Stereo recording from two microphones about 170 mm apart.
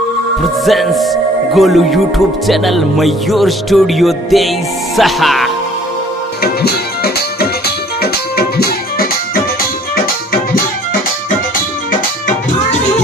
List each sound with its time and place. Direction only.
0.7 s speech: centre (ahead or behind)
6.4 s music: 65° left (ahead or behind)